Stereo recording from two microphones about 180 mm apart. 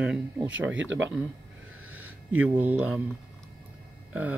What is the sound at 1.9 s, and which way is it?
Speech, 10° right (ahead or behind).